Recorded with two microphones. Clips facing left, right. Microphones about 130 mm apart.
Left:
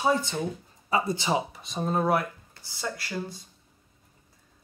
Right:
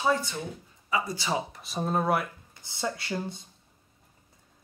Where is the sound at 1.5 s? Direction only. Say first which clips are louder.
Even; centre (ahead or behind).